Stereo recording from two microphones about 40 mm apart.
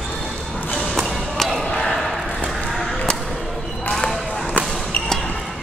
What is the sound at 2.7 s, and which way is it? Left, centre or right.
Music, centre.